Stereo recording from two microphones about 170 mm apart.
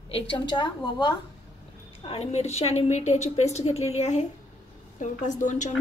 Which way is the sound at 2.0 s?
35° left (ahead or behind).